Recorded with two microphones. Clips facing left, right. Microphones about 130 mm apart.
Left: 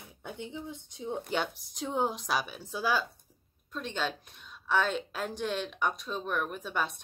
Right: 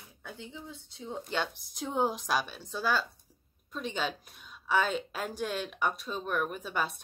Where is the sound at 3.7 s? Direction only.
5° right (ahead or behind).